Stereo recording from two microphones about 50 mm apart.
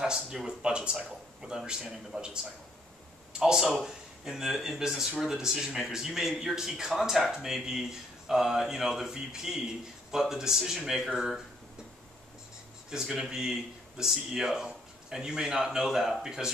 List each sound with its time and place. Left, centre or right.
0.0 s speech: centre
3.3 s speech: centre
12.9 s speech: centre